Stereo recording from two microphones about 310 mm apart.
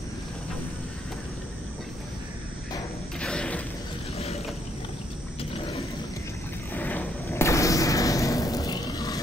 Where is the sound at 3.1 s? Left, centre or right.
Centre.